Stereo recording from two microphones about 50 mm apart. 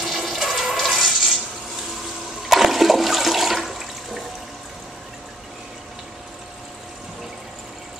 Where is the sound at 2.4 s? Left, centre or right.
Centre.